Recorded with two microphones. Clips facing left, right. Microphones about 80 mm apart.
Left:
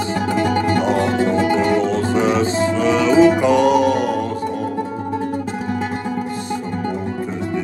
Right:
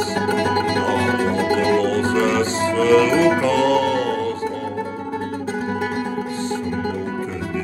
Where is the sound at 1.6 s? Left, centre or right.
Centre.